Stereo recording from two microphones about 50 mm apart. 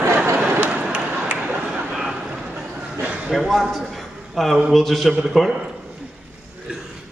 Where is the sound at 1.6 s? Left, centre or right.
Centre.